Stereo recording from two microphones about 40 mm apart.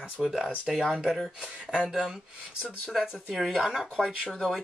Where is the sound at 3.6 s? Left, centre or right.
Centre.